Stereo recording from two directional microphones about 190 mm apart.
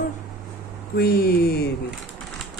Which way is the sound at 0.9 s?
55° left (ahead or behind).